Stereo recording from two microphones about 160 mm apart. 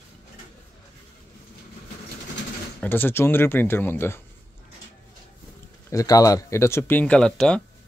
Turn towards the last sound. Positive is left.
turn(degrees=5)  # may be behind; listen again after turning